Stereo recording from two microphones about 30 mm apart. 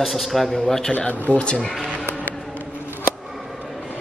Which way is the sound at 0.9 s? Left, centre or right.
Left.